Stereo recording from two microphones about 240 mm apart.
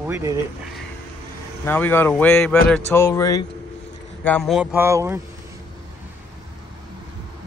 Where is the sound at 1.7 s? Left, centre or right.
Centre.